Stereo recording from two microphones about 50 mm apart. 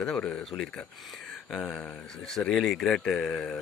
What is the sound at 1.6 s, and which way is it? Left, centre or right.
Speech, left.